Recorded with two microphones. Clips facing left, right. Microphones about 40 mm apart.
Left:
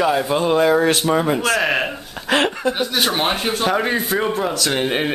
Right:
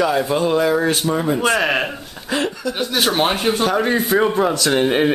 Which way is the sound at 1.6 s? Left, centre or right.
Centre.